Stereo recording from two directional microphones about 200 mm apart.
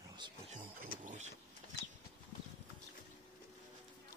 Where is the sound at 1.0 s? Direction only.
35° right (ahead or behind).